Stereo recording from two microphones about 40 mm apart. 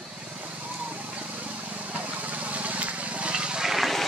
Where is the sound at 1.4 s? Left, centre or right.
Right.